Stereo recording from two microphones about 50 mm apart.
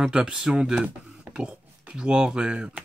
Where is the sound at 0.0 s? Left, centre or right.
Centre.